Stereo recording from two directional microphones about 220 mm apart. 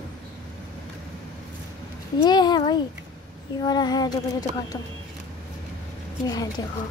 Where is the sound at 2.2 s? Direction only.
20° left (ahead or behind).